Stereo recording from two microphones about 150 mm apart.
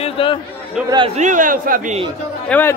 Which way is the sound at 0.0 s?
35° left (ahead or behind).